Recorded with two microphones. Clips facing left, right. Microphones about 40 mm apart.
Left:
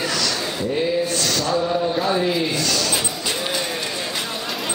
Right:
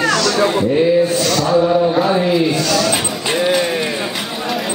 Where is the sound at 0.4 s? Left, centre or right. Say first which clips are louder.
Right 11 dB; right.